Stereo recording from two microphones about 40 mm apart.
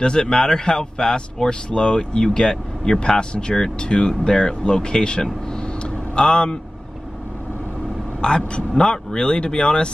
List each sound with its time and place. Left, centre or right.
0.0 s a man's voice: left
8.2 s a man's voice: left